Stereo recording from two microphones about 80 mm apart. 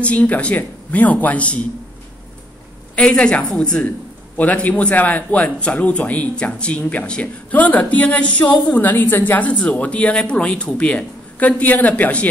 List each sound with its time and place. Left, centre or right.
0.0 s speech: centre
3.0 s speech: centre